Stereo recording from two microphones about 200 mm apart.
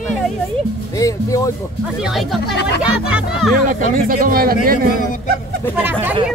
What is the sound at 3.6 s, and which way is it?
Speech, 45° right (ahead or behind).